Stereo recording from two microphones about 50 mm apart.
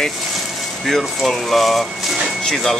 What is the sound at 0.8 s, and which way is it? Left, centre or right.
Speech, centre.